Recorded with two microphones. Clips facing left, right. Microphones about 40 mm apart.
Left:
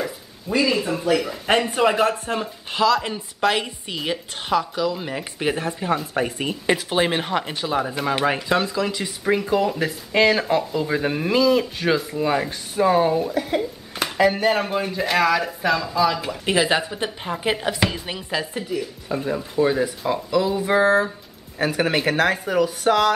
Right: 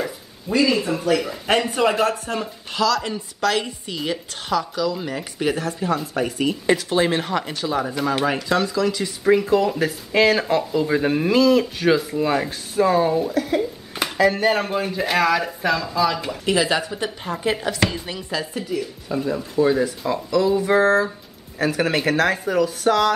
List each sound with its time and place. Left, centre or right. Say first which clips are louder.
0.0 s speech: right 1 dB; centre
1.9 s speech: left 1 dB; centre
9.2 s speech: right 3 dB; centre
14.4 s speech: right 1 dB; centre
16.4 s speech: even; left
18.0 s speech: left 1 dB; left
18.6 s speech: right 1 dB; centre